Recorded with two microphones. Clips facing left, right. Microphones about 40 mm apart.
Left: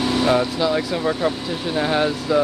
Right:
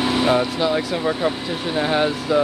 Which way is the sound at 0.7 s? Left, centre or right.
Centre.